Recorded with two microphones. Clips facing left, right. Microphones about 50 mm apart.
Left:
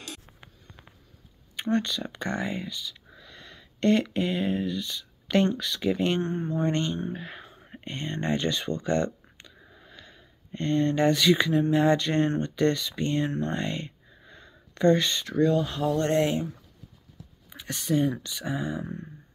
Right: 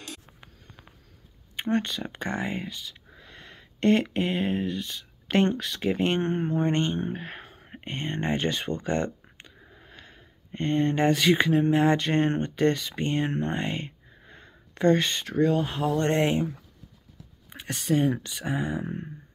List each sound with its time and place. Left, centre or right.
1.6 s speech: right
6.2 s speech: right
6.6 s speech: right
7.0 s speech: right
18.9 s speech: right